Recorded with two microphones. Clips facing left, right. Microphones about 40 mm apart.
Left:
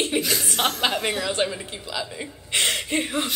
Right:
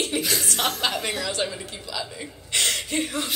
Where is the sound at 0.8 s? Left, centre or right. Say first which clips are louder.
Left 2 dB; left.